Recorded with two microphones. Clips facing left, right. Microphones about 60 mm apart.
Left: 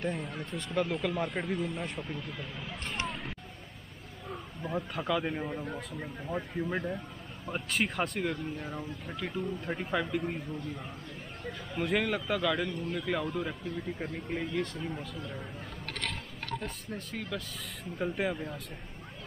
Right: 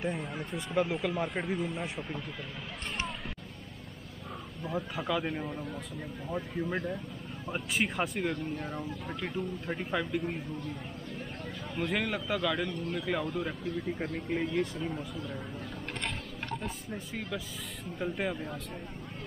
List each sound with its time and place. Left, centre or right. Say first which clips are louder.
0.0 s speech: even; centre
4.6 s speech: left 1 dB; centre
11.7 s speech: left 2 dB; centre
16.5 s speech: left 1 dB; centre